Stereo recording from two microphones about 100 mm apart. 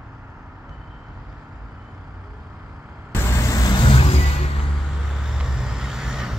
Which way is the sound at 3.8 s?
65° left (ahead or behind).